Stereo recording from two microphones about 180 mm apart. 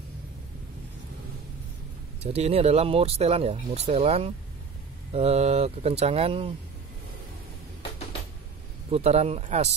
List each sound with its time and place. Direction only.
2.2 s speech: 35° right (ahead or behind)
8.9 s speech: 35° right (ahead or behind)